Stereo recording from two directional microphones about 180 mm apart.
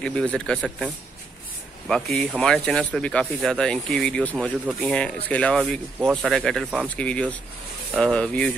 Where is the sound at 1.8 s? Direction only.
Centre (ahead or behind).